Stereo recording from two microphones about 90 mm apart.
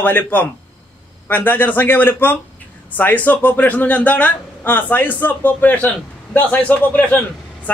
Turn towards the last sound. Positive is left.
turn(degrees=20)  # may be behind; listen again after turning